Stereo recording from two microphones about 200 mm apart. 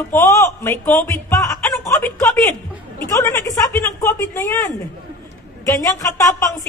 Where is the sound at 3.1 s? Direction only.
15° left (ahead or behind).